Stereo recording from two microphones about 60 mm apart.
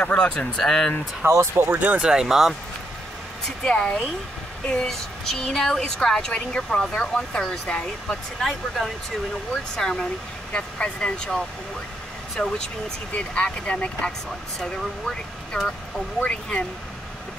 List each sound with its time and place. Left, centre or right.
0.0 s a woman's voice: centre
1.2 s speech: right
1.8 s speech: right
2.0 s speech: centre
3.4 s a woman's voice: centre
8.4 s a woman's voice: centre
14.6 s speech: centre
16.3 s a woman's voice: centre